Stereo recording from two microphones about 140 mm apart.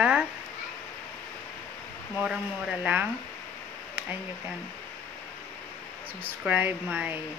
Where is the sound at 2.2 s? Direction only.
5° right (ahead or behind).